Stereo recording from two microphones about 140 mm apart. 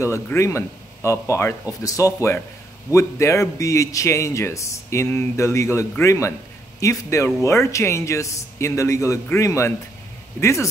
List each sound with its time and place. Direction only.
0.0 s speech: 20° left (ahead or behind)